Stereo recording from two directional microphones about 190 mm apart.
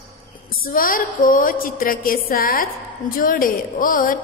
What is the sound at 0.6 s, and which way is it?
A woman's voice, 50° left (ahead or behind).